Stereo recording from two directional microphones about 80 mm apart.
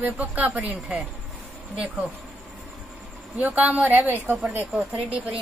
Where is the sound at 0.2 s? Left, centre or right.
Centre.